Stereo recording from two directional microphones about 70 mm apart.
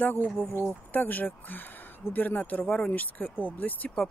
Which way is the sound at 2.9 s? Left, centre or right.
Left.